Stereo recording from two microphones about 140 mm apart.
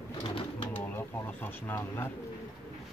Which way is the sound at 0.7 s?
15° left (ahead or behind).